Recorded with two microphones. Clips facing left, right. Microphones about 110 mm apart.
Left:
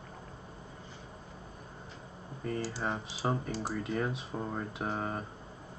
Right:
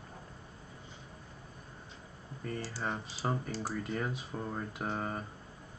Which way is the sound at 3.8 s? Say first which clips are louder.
Left 3 dB; centre (ahead or behind).